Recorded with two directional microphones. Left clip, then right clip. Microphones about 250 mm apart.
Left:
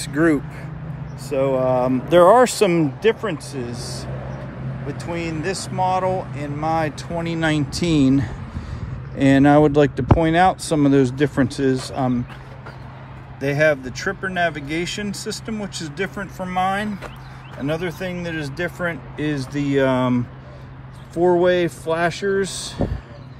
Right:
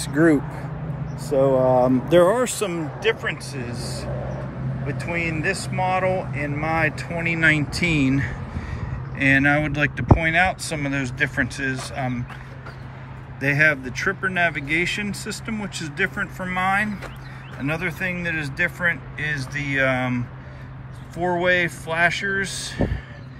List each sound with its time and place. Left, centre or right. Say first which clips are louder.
0.0 s speech: even; centre
2.3 s speech: left 9 dB; left
13.5 s speech: left 1 dB; centre